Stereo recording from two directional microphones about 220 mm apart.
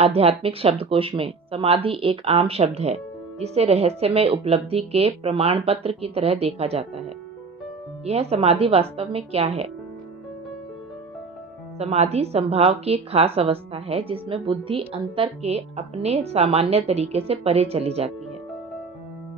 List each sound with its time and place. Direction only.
0.0 s speech: 25° right (ahead or behind)
11.8 s speech: 30° right (ahead or behind)